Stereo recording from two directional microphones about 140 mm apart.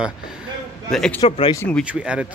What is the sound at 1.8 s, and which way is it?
Speech, 10° right (ahead or behind).